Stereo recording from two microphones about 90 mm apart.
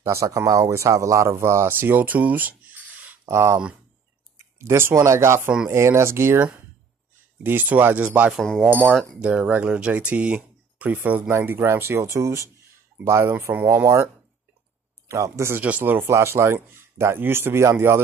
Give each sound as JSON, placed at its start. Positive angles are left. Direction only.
{"t": 0.0, "sound": "speech", "side_deg": -35}
{"t": 3.3, "sound": "speech", "side_deg": -30}
{"t": 4.6, "sound": "speech", "side_deg": -30}
{"t": 7.4, "sound": "speech", "side_deg": -20}
{"t": 15.0, "sound": "speech", "side_deg": -35}
{"t": 15.6, "sound": "speech", "side_deg": -20}